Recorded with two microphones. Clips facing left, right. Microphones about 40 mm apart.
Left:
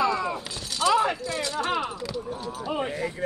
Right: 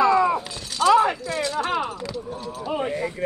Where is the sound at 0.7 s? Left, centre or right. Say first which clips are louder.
Right 5 dB; centre.